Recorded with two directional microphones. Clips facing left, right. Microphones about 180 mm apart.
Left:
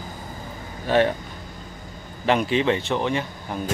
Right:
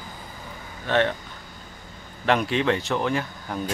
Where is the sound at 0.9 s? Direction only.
10° left (ahead or behind).